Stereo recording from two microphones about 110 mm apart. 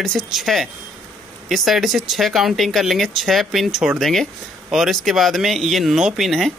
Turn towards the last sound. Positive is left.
turn(degrees=0)  # may be behind; listen again after turning